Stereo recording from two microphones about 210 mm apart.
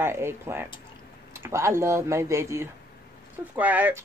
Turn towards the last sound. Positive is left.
turn(degrees=-5)  # may be behind; listen again after turning